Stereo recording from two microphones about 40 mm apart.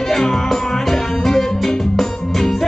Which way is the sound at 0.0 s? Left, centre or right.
Centre.